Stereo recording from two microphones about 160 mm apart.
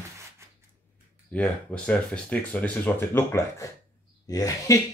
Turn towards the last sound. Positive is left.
turn(degrees=20)  # may be behind; listen again after turning